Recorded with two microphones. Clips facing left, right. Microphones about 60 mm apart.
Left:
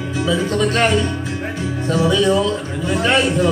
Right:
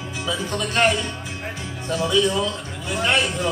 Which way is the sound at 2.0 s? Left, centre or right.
Left.